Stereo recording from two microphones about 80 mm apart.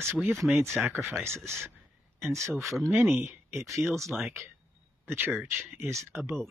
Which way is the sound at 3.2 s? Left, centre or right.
Right.